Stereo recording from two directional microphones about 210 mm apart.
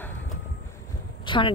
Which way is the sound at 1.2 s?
25° left (ahead or behind).